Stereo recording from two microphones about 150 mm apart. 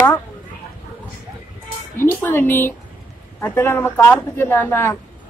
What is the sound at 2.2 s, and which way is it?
Speech, 15° left (ahead or behind).